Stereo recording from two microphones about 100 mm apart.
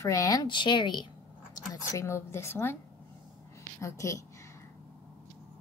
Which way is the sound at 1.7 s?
30° left (ahead or behind).